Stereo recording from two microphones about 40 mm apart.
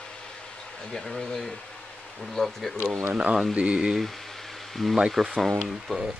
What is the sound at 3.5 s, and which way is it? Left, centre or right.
Speech, right.